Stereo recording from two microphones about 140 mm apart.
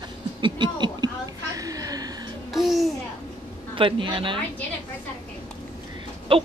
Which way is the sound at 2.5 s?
Centre (ahead or behind).